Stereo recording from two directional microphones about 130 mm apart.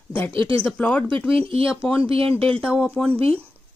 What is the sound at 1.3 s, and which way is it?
Speech, 45° right (ahead or behind).